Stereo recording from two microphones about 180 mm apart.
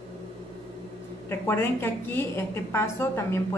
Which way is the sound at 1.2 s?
10° left (ahead or behind).